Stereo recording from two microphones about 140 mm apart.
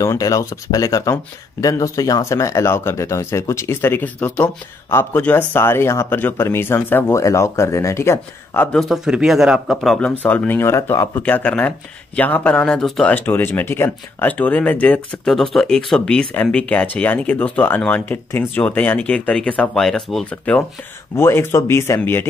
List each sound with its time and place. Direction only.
0.0 s speech: 25° left (ahead or behind)
8.7 s speech: centre (ahead or behind); by 22.2 s 20° left (ahead or behind)